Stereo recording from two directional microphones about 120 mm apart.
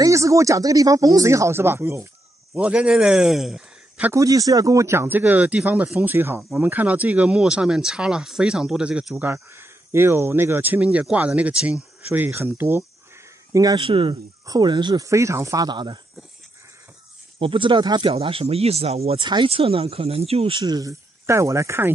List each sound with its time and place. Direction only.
0.0 s a man's voice: 25° right (ahead or behind); by 4.1 s 5° right (ahead or behind)
4.1 s speech: 30° right (ahead or behind); by 9.3 s 5° right (ahead or behind)
9.3 s speech: 20° right (ahead or behind)
13.5 s speech: 30° right (ahead or behind)
13.7 s speech: 45° right (ahead or behind)
14.4 s speech: 35° right (ahead or behind)
15.0 s speech: 25° right (ahead or behind)
17.4 s speech: 45° right (ahead or behind)
18.1 s speech: 55° right (ahead or behind)
19.2 s speech: 45° right (ahead or behind)
20.6 s speech: 35° right (ahead or behind)
21.3 s speech: 25° right (ahead or behind)